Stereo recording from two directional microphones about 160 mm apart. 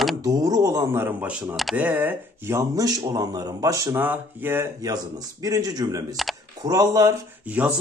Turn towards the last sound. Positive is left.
turn(degrees=-10)  # may be behind; listen again after turning